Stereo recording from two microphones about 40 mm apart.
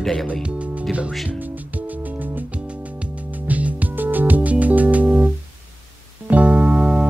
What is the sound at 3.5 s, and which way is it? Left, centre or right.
Music, right.